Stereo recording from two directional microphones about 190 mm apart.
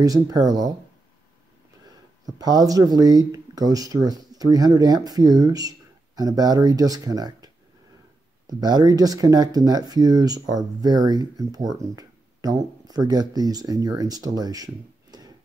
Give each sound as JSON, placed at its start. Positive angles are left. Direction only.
{"t": 0.0, "sound": "speech", "side_deg": -20}
{"t": 1.9, "sound": "speech", "side_deg": -20}